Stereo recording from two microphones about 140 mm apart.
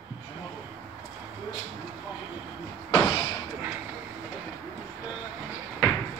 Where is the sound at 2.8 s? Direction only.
30° left (ahead or behind).